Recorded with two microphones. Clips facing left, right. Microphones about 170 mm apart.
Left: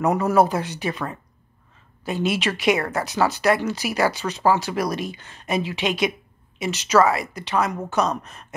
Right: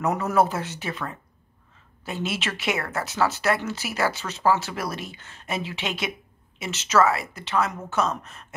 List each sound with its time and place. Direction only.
0.0 s speech: 10° left (ahead or behind)